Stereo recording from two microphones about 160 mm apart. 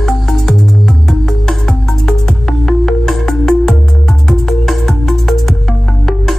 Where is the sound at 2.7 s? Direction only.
Centre (ahead or behind).